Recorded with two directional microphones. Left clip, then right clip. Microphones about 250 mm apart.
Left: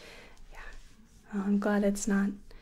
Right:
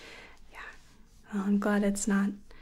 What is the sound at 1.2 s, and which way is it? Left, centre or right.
Speech, centre.